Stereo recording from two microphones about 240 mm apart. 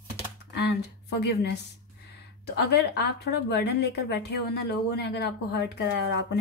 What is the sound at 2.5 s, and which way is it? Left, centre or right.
A woman's voice, left.